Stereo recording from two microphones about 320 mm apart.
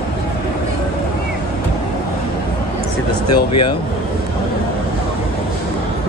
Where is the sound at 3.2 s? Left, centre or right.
Left.